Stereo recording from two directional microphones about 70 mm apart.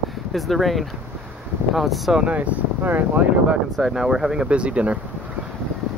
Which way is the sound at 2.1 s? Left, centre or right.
Centre.